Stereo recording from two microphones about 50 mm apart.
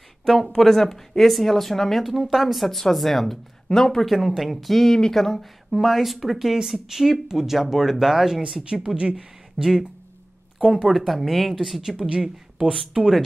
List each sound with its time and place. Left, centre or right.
0.2 s speech: centre
4.4 s speech: centre
10.9 s speech: centre
12.0 s speech: centre
12.9 s speech: centre